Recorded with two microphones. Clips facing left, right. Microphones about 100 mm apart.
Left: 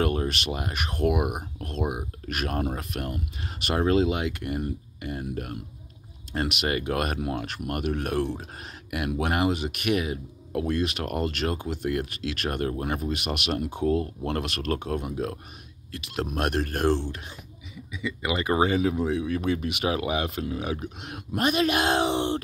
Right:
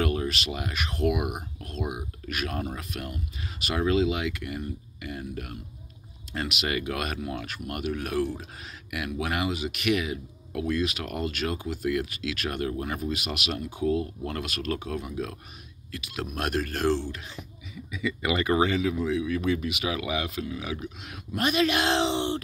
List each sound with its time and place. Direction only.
0.0 s speech: 40° left (ahead or behind)
13.2 s speech: 55° left (ahead or behind)
13.7 s speech: 30° left (ahead or behind)
14.8 s speech: 30° left (ahead or behind)
16.3 s speech: 45° left (ahead or behind)
17.9 s speech: 20° left (ahead or behind)
18.5 s speech: 30° left (ahead or behind)
21.0 s speech: 50° left (ahead or behind)